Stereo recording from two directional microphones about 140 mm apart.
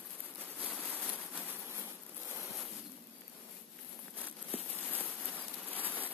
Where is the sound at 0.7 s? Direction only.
10° left (ahead or behind).